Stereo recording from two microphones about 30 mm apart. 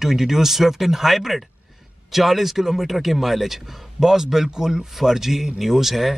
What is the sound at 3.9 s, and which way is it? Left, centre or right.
Speech, centre.